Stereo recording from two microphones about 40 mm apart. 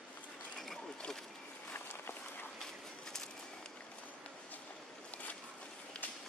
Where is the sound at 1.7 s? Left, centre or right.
Left.